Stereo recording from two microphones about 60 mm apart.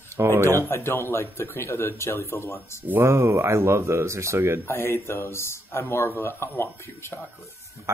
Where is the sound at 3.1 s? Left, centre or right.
Right.